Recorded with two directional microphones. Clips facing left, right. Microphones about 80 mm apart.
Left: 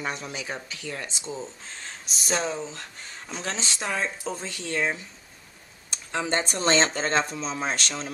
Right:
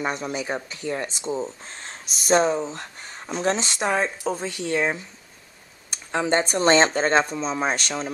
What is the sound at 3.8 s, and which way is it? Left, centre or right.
A man's voice, centre.